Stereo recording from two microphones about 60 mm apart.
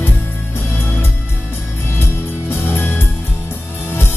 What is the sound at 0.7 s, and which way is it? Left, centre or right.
Music, left.